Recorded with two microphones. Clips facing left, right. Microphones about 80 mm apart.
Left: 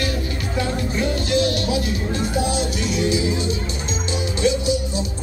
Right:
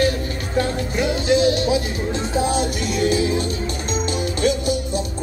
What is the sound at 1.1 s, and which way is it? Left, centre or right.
Speech, right.